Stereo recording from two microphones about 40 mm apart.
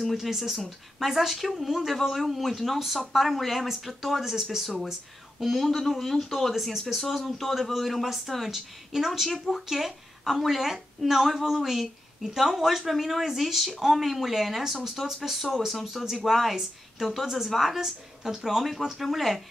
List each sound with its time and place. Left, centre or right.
0.1 s a woman's voice: centre
15.0 s speech: centre
15.7 s speech: centre
17.7 s a woman's voice: centre